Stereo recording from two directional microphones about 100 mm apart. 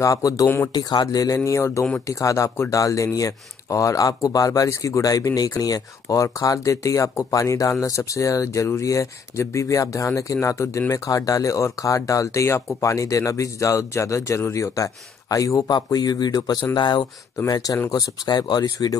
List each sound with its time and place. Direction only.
0.0 s speech: 35° left (ahead or behind)